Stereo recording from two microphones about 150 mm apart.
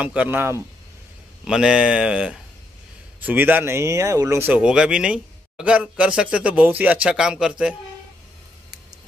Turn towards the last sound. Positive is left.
turn(degrees=-5)  # may be behind; listen again after turning